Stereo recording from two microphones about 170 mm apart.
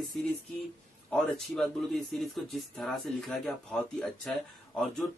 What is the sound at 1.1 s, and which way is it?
Speech, 5° left (ahead or behind).